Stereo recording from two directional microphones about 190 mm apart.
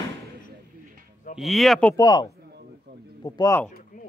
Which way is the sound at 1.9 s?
20° left (ahead or behind).